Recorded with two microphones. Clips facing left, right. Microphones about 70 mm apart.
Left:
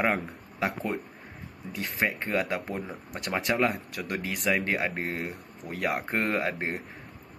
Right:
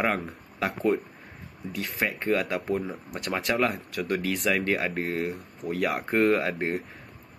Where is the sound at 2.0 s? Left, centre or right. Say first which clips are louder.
Right 2 dB; left.